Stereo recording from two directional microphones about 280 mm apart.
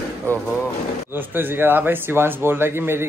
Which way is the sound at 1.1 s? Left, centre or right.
Centre.